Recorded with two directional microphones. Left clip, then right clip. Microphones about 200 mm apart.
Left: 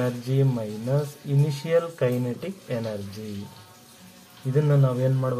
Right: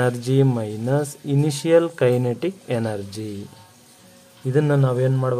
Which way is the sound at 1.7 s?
50° right (ahead or behind).